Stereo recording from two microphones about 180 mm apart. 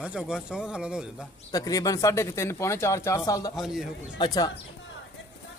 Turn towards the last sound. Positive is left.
turn(degrees=20)  # may be behind; listen again after turning